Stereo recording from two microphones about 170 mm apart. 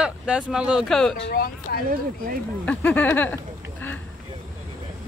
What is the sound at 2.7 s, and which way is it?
Speech, 10° left (ahead or behind).